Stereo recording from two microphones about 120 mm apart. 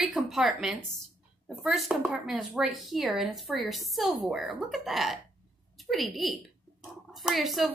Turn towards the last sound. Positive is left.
turn(degrees=0)  # may be behind; listen again after turning